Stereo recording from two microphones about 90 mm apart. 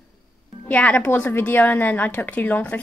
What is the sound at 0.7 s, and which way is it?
A woman's voice, 15° left (ahead or behind).